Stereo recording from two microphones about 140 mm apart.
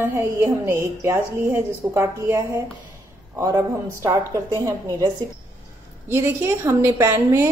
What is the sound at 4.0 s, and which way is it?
Speech, 20° right (ahead or behind).